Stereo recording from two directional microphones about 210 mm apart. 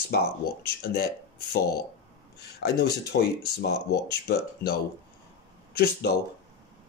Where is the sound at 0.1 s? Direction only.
50° left (ahead or behind).